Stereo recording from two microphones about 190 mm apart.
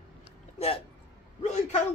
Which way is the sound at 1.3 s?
35° left (ahead or behind).